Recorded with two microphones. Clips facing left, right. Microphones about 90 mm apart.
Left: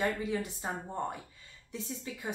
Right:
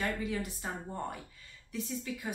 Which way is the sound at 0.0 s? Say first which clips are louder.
Left 2 dB; 25° left (ahead or behind).